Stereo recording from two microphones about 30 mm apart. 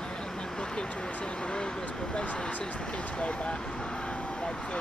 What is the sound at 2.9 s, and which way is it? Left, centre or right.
Vehicle, left.